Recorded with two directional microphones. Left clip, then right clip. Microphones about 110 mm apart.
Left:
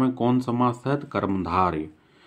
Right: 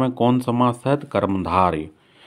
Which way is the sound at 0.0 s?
50° right (ahead or behind).